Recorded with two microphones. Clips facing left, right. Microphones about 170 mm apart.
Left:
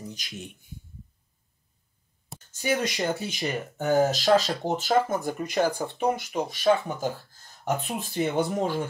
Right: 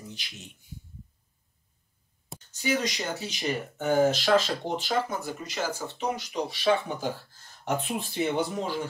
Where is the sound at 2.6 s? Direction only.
50° left (ahead or behind).